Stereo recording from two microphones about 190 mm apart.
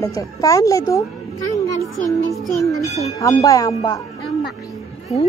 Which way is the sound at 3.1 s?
20° left (ahead or behind).